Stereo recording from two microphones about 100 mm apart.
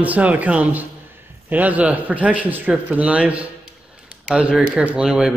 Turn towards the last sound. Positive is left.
turn(degrees=-5)  # may be behind; listen again after turning